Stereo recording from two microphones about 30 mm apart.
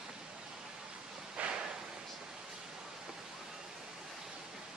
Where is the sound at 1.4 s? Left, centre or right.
Right.